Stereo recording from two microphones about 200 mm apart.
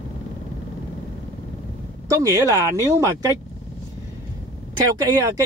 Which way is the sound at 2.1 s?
15° right (ahead or behind).